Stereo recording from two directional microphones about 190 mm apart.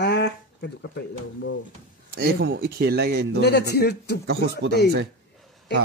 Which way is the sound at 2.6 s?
55° right (ahead or behind).